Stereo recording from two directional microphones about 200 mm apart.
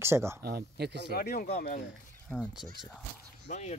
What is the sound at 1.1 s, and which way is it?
Speech, 50° left (ahead or behind).